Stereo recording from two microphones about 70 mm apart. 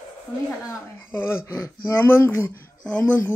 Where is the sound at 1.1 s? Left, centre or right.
Left.